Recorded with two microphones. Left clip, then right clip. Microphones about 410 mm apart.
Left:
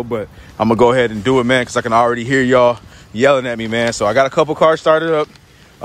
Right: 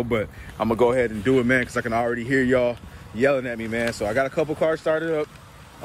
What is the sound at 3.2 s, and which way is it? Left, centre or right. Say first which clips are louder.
Speech: left 8 dB; left.